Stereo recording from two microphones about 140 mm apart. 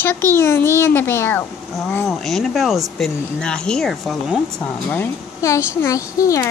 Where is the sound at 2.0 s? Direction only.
Centre (ahead or behind).